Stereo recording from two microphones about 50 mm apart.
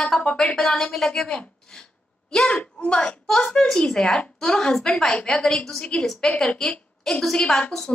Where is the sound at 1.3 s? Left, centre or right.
Left.